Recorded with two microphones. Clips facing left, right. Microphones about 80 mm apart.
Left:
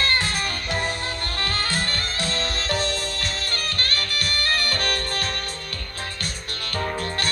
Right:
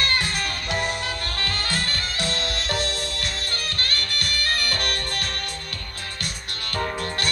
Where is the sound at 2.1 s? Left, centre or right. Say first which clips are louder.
Even; left.